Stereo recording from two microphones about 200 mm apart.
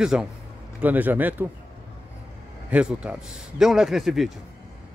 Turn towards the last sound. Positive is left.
turn(degrees=0)  # may be behind; listen again after turning